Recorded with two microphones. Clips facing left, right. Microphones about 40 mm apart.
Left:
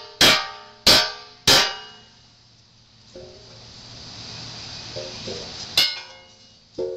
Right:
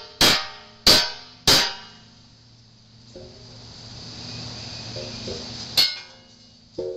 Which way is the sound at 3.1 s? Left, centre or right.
Left.